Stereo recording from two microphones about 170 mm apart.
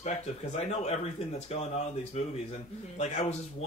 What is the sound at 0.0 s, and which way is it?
Speech, 40° left (ahead or behind).